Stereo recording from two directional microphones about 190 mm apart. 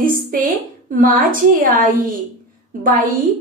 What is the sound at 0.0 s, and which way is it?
A woman's voice, 45° right (ahead or behind).